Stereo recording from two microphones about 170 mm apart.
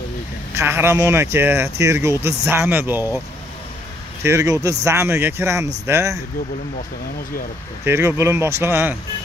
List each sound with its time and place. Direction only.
0.6 s speech: 15° right (ahead or behind)
4.2 s speech: 15° right (ahead or behind)
7.8 s speech: 15° right (ahead or behind)